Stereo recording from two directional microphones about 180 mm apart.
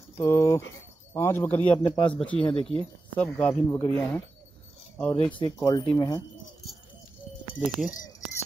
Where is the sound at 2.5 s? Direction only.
30° left (ahead or behind).